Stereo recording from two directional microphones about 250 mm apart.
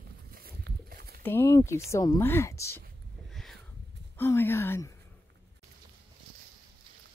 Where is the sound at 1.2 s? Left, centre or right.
Centre.